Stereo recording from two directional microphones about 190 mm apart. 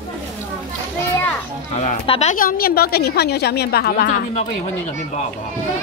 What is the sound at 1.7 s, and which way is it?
A woman's voice, 35° left (ahead or behind).